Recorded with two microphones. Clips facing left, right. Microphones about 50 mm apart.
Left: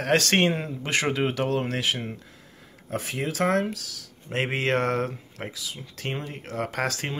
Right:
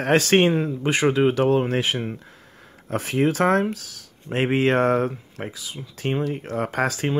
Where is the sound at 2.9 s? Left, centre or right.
Right.